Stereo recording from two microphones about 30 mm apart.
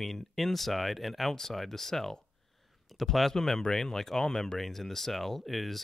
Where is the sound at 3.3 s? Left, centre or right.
Centre.